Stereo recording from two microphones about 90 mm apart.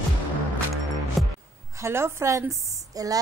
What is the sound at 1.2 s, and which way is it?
Music, centre (ahead or behind).